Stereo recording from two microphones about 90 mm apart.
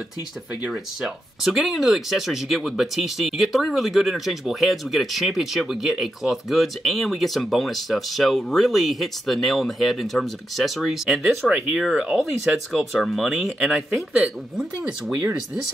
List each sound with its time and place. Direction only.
1.0 s speech: 5° right (ahead or behind)
11.4 s speech: 10° right (ahead or behind)
15.0 s speech: 30° right (ahead or behind)